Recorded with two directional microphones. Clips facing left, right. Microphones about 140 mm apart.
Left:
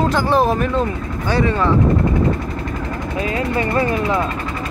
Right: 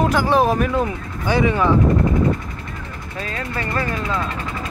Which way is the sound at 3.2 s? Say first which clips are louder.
Left 6 dB; 20° left (ahead or behind).